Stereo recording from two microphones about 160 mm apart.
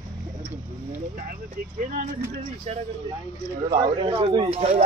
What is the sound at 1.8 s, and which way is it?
Speech, 55° right (ahead or behind).